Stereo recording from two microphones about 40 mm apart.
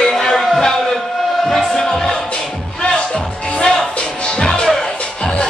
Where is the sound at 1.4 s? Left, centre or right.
Centre.